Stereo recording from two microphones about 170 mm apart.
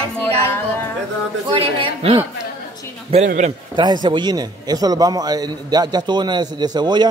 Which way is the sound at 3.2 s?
50° right (ahead or behind).